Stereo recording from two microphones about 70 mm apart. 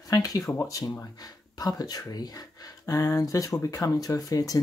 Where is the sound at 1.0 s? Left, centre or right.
Left.